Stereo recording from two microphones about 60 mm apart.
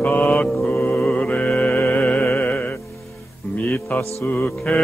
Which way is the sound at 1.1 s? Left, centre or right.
Left.